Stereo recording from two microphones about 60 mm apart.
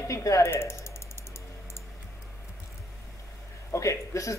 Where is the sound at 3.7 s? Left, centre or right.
Left.